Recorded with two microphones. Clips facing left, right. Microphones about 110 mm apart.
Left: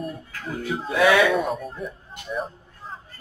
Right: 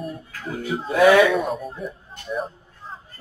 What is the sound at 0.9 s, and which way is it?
Speech, 40° right (ahead or behind).